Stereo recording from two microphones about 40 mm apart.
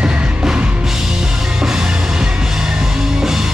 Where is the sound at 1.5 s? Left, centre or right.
Centre.